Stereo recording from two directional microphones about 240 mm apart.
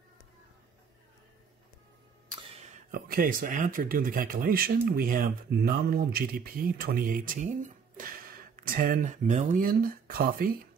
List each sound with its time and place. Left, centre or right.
2.6 s speech: right